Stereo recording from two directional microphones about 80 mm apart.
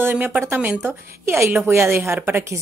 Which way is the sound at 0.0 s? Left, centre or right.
Right.